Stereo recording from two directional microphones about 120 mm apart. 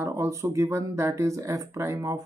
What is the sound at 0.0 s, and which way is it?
Speech, 25° right (ahead or behind).